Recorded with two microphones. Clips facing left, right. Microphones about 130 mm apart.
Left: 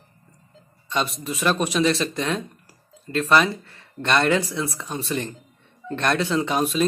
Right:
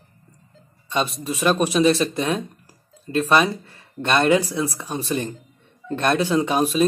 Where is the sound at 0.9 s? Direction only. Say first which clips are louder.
Right 2 dB; 25° right (ahead or behind).